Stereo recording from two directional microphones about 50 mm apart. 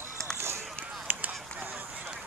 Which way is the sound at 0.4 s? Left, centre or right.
Right.